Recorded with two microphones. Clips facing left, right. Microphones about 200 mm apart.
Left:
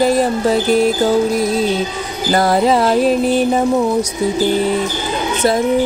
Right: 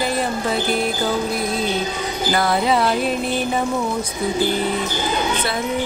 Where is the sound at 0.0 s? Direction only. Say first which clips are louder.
Left 8 dB; 40° left (ahead or behind).